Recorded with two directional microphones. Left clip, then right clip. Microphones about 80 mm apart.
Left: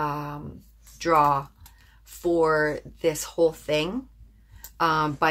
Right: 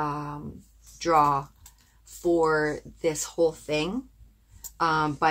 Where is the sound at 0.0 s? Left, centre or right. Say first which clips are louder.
Left 2 dB; left.